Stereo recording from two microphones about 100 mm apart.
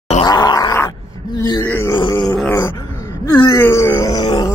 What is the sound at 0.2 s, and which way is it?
Groan, 45° left (ahead or behind).